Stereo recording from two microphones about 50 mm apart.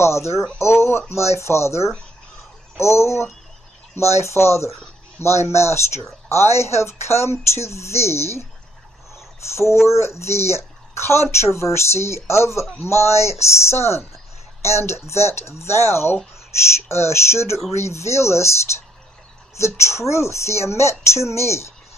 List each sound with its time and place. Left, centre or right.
0.0 s a woman's voice: left
9.1 s a sound: left
9.8 s a woman's voice: left